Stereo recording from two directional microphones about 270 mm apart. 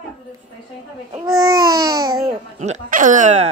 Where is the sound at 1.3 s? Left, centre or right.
Centre.